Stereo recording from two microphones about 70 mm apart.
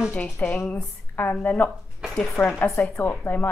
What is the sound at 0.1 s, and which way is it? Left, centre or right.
A woman's voice, centre.